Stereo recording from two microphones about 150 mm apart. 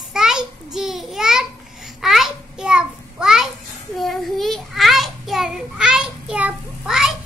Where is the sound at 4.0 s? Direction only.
Centre (ahead or behind).